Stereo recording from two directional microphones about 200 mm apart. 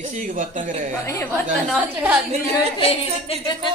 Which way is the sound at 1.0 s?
10° left (ahead or behind).